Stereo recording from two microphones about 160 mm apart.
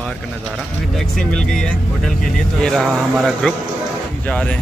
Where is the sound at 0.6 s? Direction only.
5° left (ahead or behind).